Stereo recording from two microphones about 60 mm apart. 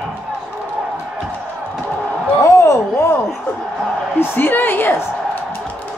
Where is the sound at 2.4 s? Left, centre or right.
Left.